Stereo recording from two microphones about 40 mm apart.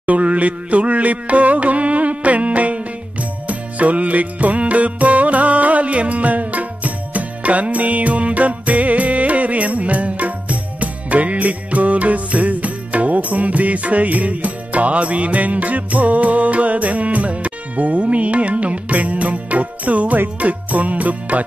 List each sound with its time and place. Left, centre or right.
0.0 s music: right